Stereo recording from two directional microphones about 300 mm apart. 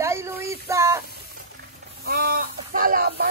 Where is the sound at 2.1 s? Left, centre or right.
Right.